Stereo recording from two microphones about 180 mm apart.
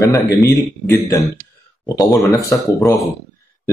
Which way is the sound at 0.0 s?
20° left (ahead or behind).